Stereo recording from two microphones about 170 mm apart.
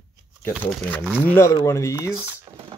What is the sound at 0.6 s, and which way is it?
Speech, 10° left (ahead or behind).